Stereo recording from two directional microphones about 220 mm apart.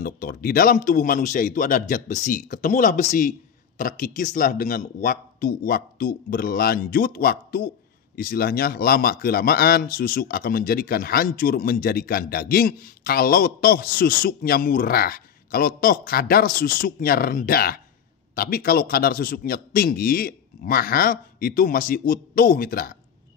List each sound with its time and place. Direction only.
0.0 s a man's voice: 40° left (ahead or behind)